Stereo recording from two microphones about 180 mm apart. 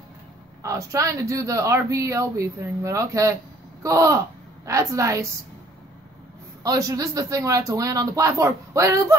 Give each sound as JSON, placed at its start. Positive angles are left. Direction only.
{"t": 0.6, "sound": "speech", "side_deg": -15}
{"t": 6.6, "sound": "speech", "side_deg": -20}